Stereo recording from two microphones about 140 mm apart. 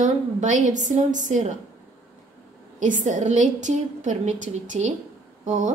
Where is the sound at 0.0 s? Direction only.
60° right (ahead or behind).